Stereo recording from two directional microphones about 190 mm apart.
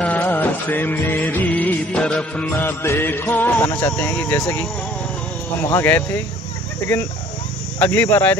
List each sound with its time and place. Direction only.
0.0 s music: 10° left (ahead or behind)
5.6 s speech: 15° left (ahead or behind)
7.8 s speech: 10° left (ahead or behind)